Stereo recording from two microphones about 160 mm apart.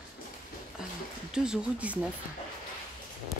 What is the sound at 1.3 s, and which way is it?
Speech, 5° right (ahead or behind).